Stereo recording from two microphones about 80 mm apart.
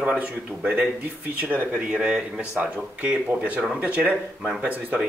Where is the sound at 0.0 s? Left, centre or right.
Centre.